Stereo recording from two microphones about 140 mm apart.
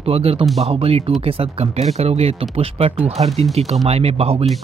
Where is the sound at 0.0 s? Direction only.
45° right (ahead or behind).